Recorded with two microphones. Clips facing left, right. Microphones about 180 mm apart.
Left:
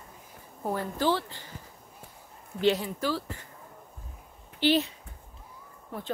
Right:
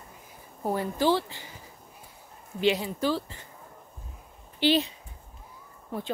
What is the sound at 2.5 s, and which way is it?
Speech, 15° right (ahead or behind).